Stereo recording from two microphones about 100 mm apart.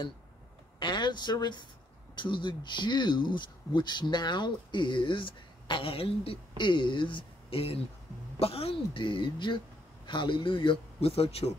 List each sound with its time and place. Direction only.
0.7 s a woman's voice: 50° left (ahead or behind); by 11.2 s 75° left (ahead or behind)